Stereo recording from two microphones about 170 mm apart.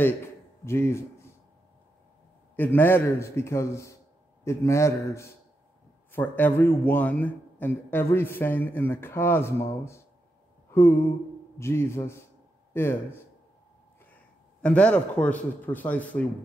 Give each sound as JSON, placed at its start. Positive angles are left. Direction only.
{"t": 0.7, "sound": "speech", "side_deg": 15}
{"t": 2.5, "sound": "a man's voice", "side_deg": 10}
{"t": 10.7, "sound": "a sound", "side_deg": 15}
{"t": 11.5, "sound": "a man's voice", "side_deg": 15}
{"t": 14.6, "sound": "a man's voice", "side_deg": 5}